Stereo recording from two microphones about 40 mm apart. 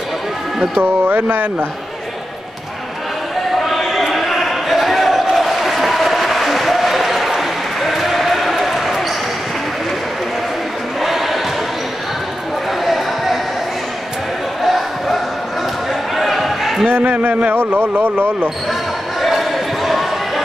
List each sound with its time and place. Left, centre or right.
0.7 s speech: right
3.6 s basketball bounce: centre
5.3 s applause: centre
11.0 s choir: centre
12.8 s a sound: centre
14.6 s a sound: centre
16.2 s a sound: centre
17.3 s speech: right
17.6 s speech: right
17.9 s speech: right
19.2 s basketball bounce: centre